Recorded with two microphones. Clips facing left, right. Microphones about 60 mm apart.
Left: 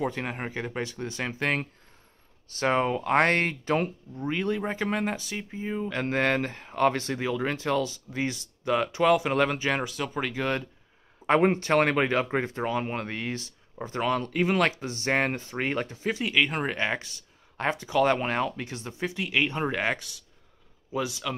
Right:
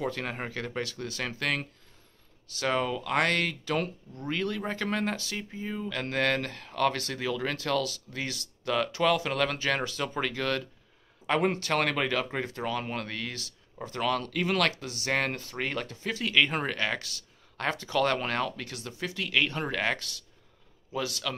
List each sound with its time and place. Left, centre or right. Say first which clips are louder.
0.0 s speech: left 2 dB; centre; by 3.9 s left
4.1 s speech: left 4 dB; centre
10.3 s speech: left 2 dB; centre
11.2 s a man's voice: left 5 dB; left; by 21.4 s centre